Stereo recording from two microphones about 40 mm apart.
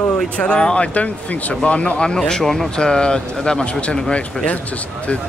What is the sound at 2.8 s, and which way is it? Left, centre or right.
Speech, left.